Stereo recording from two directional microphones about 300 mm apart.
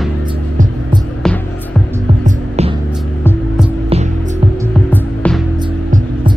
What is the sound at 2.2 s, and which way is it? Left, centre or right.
Hum, right.